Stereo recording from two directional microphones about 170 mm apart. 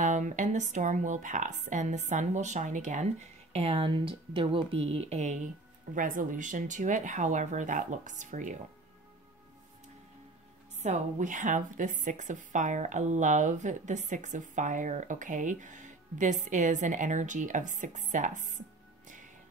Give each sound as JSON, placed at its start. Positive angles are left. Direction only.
{"t": 0.0, "sound": "a woman's voice", "side_deg": -45}
{"t": 3.5, "sound": "a woman's voice", "side_deg": -35}
{"t": 10.8, "sound": "a woman's voice", "side_deg": -45}